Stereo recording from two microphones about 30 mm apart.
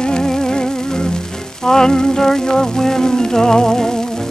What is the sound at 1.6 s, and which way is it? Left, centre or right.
Music, left.